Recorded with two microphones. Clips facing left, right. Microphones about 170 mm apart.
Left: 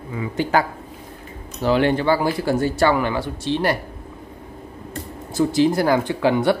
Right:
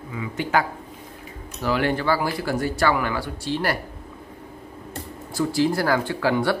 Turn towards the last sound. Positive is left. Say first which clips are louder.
# left 4 dB
turn(degrees=20)  # may be behind; listen again after turning